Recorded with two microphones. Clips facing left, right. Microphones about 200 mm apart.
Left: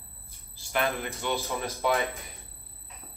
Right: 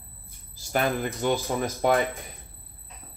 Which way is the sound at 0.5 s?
45° right (ahead or behind).